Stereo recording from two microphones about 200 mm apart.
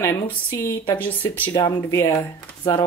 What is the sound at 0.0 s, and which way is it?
Speech, 15° left (ahead or behind).